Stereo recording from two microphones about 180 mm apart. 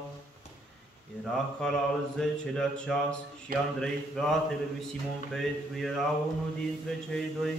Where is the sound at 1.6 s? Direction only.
5° left (ahead or behind).